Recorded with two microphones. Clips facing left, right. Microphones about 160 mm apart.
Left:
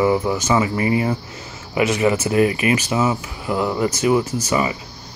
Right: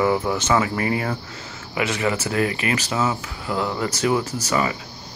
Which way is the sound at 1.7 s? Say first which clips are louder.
Left 5 dB; 20° left (ahead or behind).